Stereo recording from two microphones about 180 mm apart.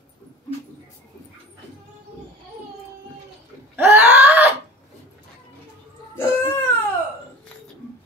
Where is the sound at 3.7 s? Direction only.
10° right (ahead or behind).